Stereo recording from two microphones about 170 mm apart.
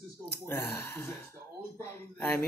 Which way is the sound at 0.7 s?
15° left (ahead or behind).